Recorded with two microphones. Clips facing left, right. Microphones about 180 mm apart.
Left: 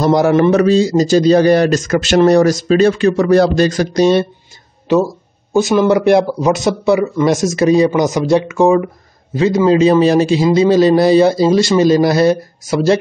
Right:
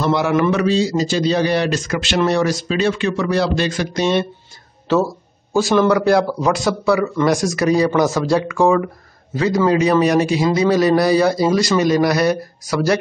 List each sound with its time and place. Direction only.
0.0 s a man's voice: 40° left (ahead or behind)
4.9 s a man's voice: 15° left (ahead or behind)